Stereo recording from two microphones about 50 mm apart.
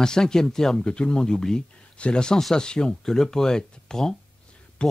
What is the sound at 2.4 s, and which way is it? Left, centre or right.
Speech, centre.